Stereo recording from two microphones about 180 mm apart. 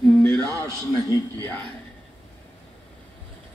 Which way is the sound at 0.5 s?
15° left (ahead or behind).